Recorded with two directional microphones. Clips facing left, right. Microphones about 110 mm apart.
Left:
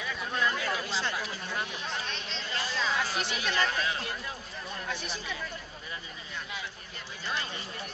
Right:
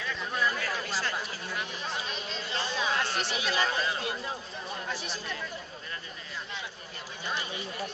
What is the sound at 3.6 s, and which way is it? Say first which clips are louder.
Speech: right 1 dB; 5° right (ahead or behind).